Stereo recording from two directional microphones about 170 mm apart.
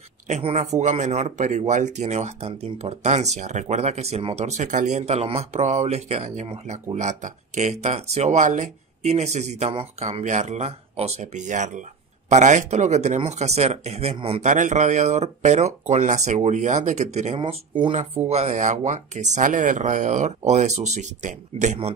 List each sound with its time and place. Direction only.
0.3 s speech: 45° right (ahead or behind)
17.4 s speech: 30° right (ahead or behind)
17.9 s speech: 40° right (ahead or behind)